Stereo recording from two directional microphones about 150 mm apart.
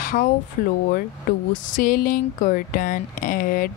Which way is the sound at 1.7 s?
65° left (ahead or behind).